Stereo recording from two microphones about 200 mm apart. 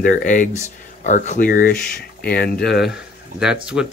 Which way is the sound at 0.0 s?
40° left (ahead or behind).